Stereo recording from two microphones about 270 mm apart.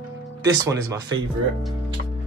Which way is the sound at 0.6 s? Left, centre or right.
Centre.